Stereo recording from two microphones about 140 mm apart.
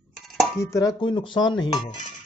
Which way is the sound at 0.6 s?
25° left (ahead or behind).